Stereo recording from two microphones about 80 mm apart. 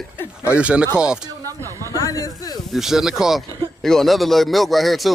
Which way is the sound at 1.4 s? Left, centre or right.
Right.